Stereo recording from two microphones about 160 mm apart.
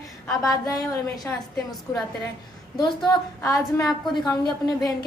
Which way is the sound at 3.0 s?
20° left (ahead or behind).